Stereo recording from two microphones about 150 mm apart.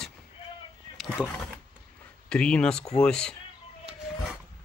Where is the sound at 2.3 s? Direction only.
5° left (ahead or behind).